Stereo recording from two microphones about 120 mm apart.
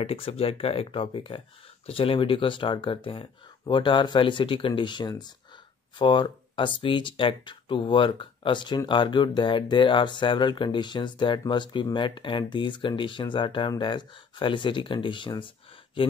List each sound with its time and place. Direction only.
0.0 s speech: 55° left (ahead or behind)